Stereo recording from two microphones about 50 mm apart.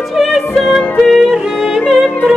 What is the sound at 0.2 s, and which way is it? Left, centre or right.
Music, centre.